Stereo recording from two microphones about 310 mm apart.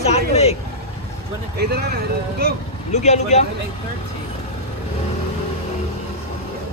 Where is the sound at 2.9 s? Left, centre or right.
Left.